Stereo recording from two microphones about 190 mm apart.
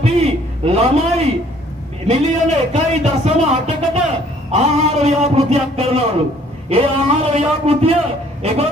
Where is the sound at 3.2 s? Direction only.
35° right (ahead or behind).